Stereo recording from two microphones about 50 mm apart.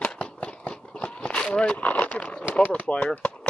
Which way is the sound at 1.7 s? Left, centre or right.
Left.